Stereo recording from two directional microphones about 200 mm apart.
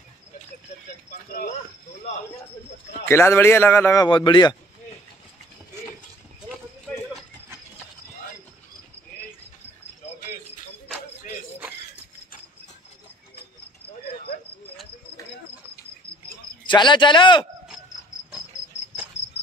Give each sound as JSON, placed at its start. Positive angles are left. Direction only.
{"t": 3.1, "sound": "a man's voice", "side_deg": 15}
{"t": 16.6, "sound": "speech", "side_deg": 25}